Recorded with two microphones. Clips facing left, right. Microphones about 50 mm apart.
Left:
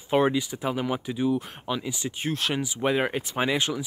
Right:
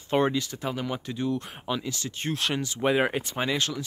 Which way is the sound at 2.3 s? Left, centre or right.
Centre.